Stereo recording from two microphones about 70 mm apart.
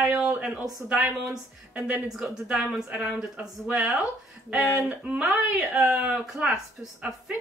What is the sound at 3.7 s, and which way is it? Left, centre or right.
Speech, centre.